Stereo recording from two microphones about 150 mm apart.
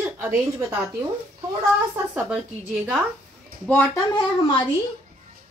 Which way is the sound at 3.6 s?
10° left (ahead or behind).